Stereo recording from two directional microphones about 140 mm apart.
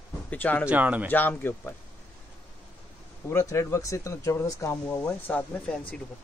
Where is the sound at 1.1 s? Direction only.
15° left (ahead or behind).